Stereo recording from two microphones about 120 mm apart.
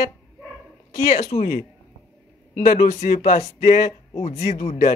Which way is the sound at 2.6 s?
75° left (ahead or behind).